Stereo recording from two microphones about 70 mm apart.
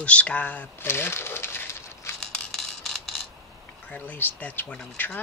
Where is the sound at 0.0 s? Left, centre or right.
Centre.